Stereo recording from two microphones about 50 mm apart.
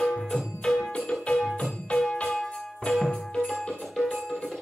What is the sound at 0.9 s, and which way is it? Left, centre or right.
Music, left.